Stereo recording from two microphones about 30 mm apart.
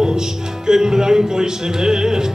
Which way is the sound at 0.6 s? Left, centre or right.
Centre.